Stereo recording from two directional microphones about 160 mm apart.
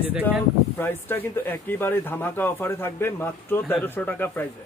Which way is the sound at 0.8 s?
10° left (ahead or behind).